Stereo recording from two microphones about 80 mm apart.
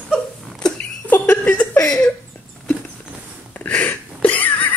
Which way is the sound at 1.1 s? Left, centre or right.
Left.